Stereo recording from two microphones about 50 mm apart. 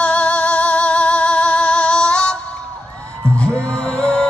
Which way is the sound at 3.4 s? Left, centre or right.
Left.